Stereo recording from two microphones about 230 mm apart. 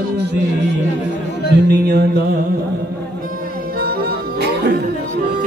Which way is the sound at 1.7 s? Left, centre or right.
Right.